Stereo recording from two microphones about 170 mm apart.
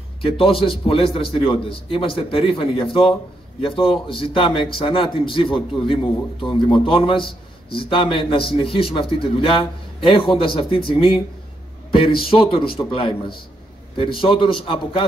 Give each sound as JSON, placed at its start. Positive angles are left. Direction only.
{"t": 0.2, "sound": "a man's voice", "side_deg": 35}
{"t": 11.9, "sound": "a man's voice", "side_deg": 30}